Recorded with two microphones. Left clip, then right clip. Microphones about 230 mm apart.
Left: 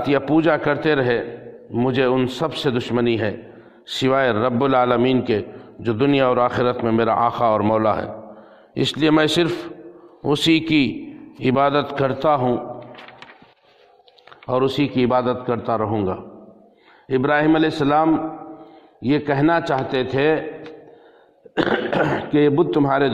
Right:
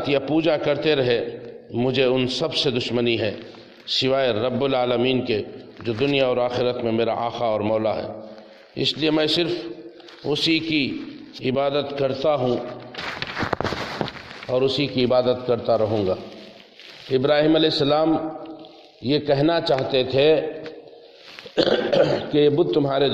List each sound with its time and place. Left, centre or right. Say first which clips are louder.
0.1 s a man's voice: left 3 dB; left
14.5 s a man's voice: left 2 dB; left
21.5 s speech: right 1 dB; left